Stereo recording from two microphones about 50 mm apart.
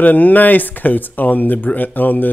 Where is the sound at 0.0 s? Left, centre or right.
Left.